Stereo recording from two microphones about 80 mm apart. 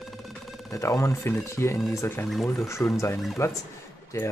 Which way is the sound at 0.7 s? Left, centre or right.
Left.